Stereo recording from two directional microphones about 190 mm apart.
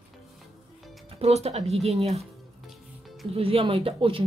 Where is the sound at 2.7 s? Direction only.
Centre (ahead or behind).